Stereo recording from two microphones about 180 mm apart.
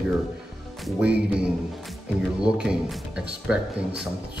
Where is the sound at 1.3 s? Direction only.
Centre (ahead or behind).